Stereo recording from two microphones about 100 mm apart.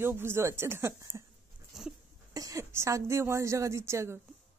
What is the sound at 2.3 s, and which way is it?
A woman's voice, 35° right (ahead or behind).